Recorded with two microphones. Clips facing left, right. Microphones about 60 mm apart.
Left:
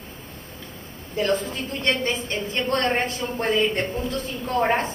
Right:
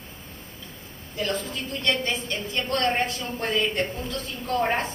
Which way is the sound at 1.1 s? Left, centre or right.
Left.